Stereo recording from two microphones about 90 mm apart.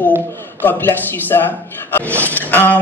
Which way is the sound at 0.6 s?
20° left (ahead or behind).